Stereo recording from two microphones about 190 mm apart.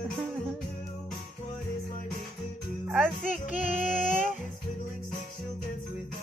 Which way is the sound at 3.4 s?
40° left (ahead or behind).